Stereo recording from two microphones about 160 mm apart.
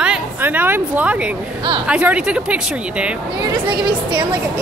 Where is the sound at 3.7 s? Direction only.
30° right (ahead or behind).